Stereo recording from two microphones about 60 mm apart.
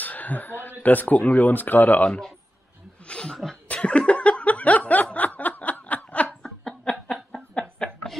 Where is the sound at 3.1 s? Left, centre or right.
Centre.